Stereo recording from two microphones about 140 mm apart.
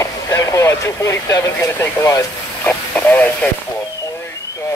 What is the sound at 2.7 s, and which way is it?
Speech, 10° left (ahead or behind).